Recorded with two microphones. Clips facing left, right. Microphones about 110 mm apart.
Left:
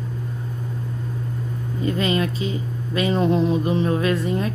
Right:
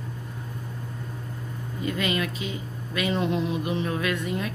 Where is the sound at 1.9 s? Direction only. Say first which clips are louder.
Left 5 dB; 35° left (ahead or behind).